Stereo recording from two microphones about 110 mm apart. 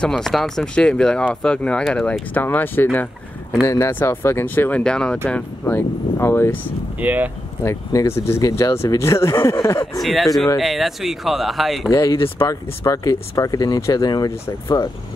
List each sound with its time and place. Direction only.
0.0 s speech: 5° left (ahead or behind); by 6.6 s 20° left (ahead or behind)
7.0 s speech: 15° right (ahead or behind)
7.6 s speech: 30° left (ahead or behind)
10.0 s speech: centre (ahead or behind)
11.9 s speech: 30° left (ahead or behind)